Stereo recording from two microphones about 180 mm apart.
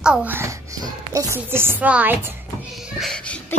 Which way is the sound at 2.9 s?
5° left (ahead or behind).